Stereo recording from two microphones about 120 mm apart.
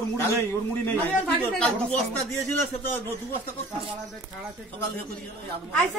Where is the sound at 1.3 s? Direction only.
5° left (ahead or behind).